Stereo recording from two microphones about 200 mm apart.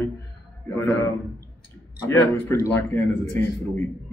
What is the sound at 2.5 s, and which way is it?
Speech, 10° left (ahead or behind).